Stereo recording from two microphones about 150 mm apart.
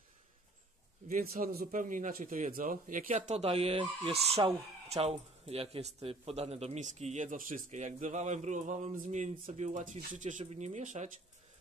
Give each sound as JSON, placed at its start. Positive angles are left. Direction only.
{"t": 1.0, "sound": "a man's voice", "side_deg": -60}
{"t": 1.4, "sound": "speech", "side_deg": -75}